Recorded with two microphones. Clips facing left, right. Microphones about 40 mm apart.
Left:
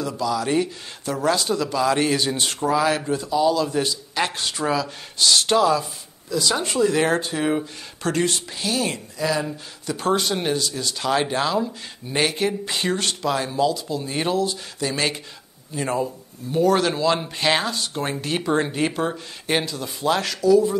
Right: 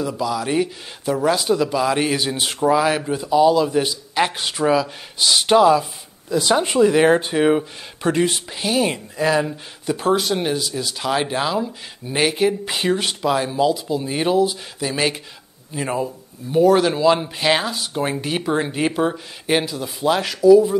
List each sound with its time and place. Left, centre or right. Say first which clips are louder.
0.0 s speech: right 1 dB; centre
9.2 s speech: right 5 dB; right
9.9 s speech: right 2 dB; centre